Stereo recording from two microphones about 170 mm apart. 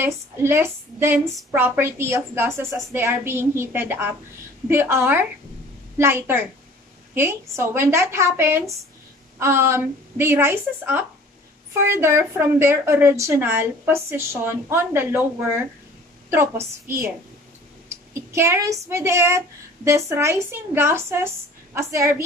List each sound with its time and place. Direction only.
0.0 s a woman's voice: 15° right (ahead or behind)
16.3 s a woman's voice: 15° right (ahead or behind)
17.8 s a woman's voice: 15° right (ahead or behind)